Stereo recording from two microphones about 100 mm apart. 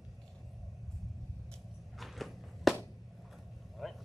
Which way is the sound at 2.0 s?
Centre (ahead or behind).